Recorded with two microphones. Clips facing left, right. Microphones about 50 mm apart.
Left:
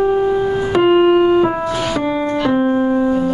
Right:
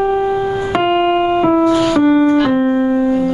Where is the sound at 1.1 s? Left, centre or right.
Right.